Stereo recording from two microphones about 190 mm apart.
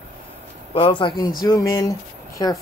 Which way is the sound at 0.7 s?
25° left (ahead or behind).